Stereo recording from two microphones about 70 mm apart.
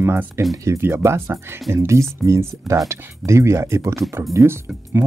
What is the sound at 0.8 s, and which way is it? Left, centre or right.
Speech, right.